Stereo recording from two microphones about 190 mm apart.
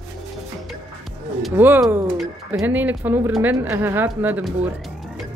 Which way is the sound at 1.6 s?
10° right (ahead or behind).